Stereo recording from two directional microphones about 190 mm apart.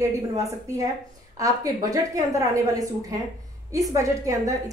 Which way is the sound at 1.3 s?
20° right (ahead or behind).